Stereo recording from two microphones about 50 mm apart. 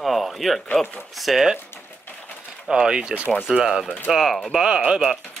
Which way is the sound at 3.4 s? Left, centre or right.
Centre.